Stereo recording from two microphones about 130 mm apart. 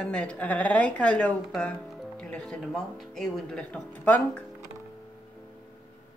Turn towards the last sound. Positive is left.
turn(degrees=10)  # may be behind; listen again after turning